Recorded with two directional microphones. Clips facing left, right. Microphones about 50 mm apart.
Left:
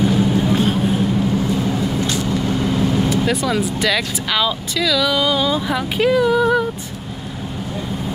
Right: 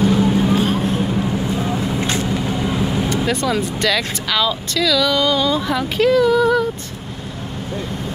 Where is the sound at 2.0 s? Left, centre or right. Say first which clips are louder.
Even; right.